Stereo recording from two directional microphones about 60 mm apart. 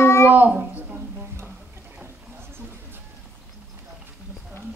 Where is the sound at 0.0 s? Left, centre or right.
Left.